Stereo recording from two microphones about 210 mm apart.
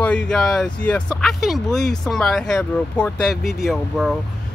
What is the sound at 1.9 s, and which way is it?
Speech, centre (ahead or behind).